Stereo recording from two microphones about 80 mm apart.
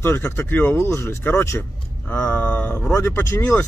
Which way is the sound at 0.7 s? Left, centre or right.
Left.